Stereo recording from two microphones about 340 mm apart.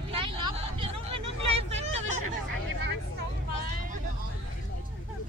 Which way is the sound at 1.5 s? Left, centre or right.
Centre.